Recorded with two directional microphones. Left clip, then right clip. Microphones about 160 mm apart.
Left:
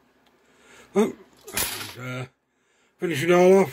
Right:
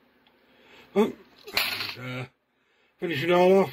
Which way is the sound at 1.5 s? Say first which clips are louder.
Right 3 dB; 10° left (ahead or behind).